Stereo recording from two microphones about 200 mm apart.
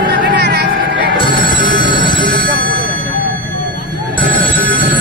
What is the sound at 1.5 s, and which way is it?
Telephone bell ringing, 20° left (ahead or behind).